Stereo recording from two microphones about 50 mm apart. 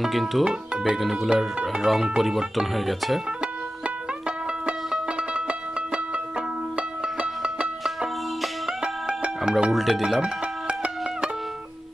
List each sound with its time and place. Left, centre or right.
0.0 s speech: centre
1.6 s speech: centre
5.0 s music: right
8.8 s music: centre
9.8 s speech: centre